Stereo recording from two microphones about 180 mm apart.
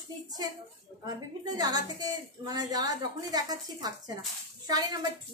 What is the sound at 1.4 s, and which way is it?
A woman's voice, 20° right (ahead or behind).